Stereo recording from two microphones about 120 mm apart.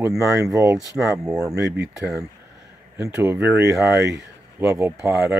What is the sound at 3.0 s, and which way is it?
A man's voice, 20° right (ahead or behind).